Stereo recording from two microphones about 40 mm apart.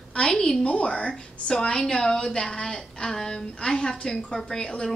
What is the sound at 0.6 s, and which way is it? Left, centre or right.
A woman's voice, left.